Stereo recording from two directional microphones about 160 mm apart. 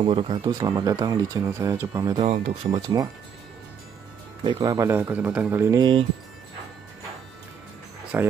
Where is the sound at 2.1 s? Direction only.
40° right (ahead or behind).